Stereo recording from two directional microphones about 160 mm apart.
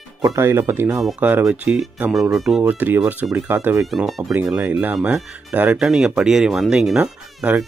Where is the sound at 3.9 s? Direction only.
Centre (ahead or behind).